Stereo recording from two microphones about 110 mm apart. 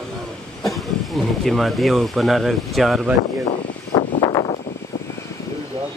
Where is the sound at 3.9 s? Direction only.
40° left (ahead or behind).